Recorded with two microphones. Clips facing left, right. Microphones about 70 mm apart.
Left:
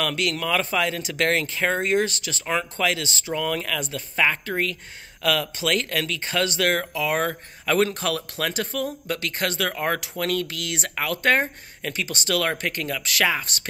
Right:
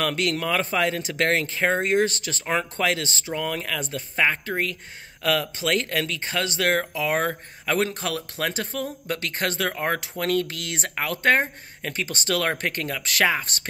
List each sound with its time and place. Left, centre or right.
0.0 s speech: right